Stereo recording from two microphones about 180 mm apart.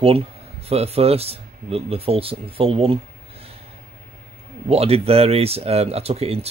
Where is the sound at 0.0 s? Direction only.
35° right (ahead or behind).